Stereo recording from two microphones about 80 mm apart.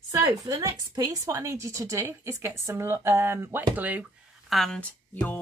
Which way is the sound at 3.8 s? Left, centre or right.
Right.